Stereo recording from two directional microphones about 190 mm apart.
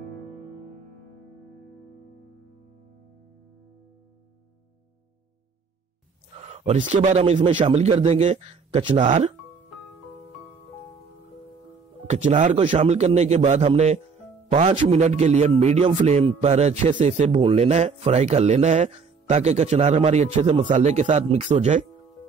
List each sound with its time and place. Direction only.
6.4 s a man's voice: 35° right (ahead or behind)
12.1 s a man's voice: 40° right (ahead or behind)